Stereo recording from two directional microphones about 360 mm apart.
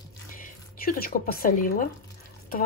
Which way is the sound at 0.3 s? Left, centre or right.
Left.